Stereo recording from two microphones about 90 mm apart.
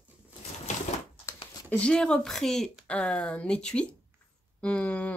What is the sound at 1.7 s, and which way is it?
Speech, 10° left (ahead or behind).